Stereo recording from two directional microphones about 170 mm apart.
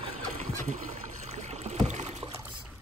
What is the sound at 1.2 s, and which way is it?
Boat, 40° right (ahead or behind).